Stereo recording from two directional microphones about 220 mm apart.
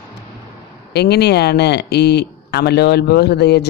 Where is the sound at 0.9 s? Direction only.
50° left (ahead or behind).